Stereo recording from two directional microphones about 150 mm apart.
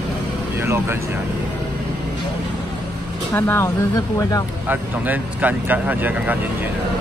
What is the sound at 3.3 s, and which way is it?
Speech, 15° left (ahead or behind).